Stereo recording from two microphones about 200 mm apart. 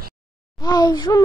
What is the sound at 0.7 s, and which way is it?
Speech, 20° left (ahead or behind).